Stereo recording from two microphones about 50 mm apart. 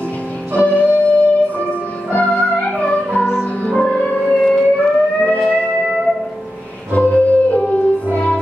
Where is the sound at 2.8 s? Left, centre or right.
Left.